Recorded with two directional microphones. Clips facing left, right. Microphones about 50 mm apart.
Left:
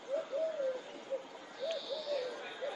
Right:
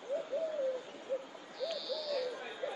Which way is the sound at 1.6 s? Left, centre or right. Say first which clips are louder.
Even; left.